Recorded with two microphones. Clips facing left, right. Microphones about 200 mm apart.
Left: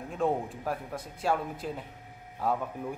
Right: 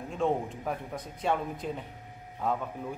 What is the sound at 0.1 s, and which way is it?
A man's voice, centre (ahead or behind).